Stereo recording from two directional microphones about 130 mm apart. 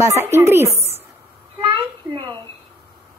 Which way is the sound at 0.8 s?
50° right (ahead or behind).